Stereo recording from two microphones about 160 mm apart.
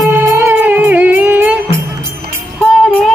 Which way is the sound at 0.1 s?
10° right (ahead or behind).